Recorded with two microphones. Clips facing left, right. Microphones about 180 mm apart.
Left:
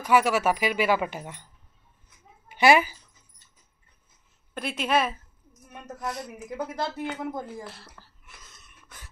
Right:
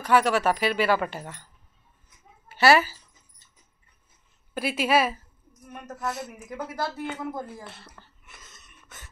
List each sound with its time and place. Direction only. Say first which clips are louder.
0.0 s a woman's voice: even; 10° left (ahead or behind)
4.6 s a woman's voice: right 2 dB; 5° right (ahead or behind)